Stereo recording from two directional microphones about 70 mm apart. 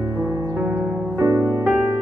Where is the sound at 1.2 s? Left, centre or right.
Right.